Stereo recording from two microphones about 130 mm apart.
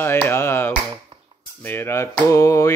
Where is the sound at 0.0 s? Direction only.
15° left (ahead or behind).